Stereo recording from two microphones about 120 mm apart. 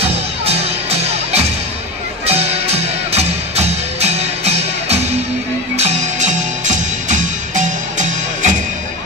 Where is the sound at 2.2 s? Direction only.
60° right (ahead or behind).